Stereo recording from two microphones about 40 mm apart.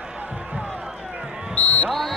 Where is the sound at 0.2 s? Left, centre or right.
Right.